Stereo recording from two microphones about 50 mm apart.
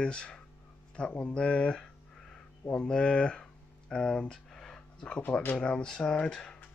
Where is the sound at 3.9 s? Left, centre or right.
Centre.